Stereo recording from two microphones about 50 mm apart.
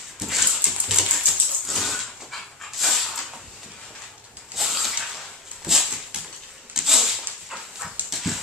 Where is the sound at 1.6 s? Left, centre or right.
Centre.